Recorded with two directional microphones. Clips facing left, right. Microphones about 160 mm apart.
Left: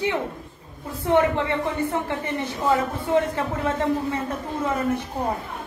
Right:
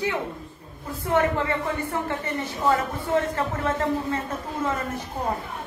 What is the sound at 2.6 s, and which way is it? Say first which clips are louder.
Speech: left 1 dB; 15° left (ahead or behind).